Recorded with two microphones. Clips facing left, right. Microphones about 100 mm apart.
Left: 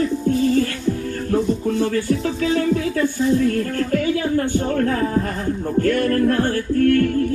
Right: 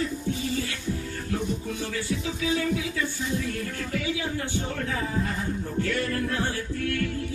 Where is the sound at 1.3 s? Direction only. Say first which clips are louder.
Left 11 dB; 50° left (ahead or behind).